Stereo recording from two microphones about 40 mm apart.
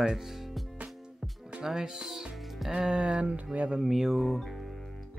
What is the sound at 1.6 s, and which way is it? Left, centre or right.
Speech, centre.